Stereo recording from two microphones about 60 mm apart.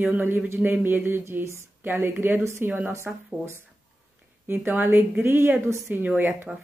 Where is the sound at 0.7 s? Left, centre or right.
Right.